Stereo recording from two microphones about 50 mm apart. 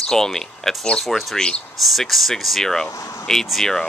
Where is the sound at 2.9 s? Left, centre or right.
Left.